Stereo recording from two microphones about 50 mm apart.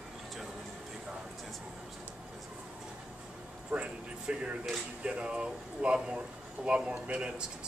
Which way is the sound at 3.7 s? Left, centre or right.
Right.